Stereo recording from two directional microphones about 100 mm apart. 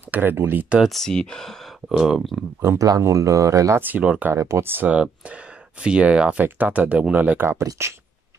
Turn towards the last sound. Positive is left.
turn(degrees=-25)  # may be behind; listen again after turning